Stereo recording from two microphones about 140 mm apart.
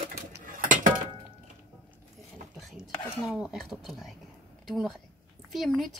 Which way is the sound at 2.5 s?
Centre (ahead or behind).